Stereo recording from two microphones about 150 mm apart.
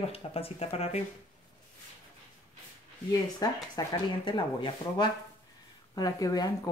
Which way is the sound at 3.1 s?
25° left (ahead or behind).